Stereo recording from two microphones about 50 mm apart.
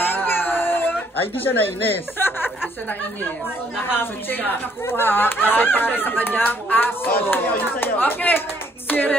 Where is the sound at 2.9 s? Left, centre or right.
Left.